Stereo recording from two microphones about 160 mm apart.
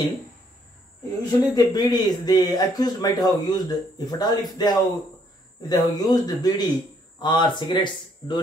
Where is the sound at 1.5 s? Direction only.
25° left (ahead or behind).